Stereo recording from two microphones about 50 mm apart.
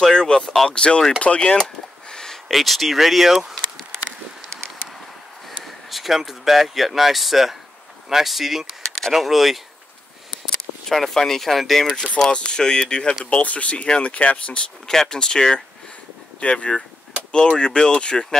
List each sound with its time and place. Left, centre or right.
0.0 s speech: centre
1.6 s a sound: centre
2.4 s speech: centre
4.5 s a sound: centre
5.6 s speech: centre
10.9 s speech: centre
12.3 s speech: centre
14.9 s speech: centre